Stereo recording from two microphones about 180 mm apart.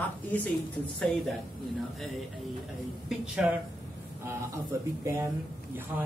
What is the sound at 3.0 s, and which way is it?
Speech, 5° right (ahead or behind).